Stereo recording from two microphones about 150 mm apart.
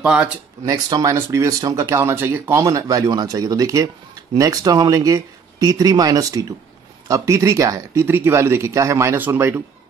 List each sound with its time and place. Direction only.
0.0 s speech: 5° right (ahead or behind)
0.7 s speech: 25° right (ahead or behind)